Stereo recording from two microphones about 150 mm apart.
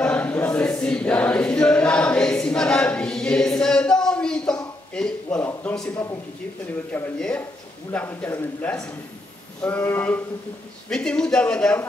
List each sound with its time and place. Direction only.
0.0 s choir: 10° left (ahead or behind)
5.5 s a sound: 10° left (ahead or behind)
6.9 s a man's voice: 10° left (ahead or behind)